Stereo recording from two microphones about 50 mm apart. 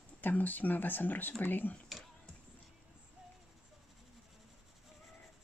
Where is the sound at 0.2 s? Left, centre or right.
Left.